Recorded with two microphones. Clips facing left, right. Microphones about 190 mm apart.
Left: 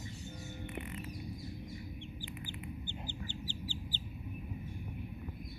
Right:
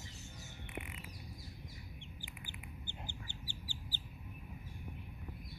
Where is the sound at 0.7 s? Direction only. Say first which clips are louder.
Left 2 dB; 10° right (ahead or behind).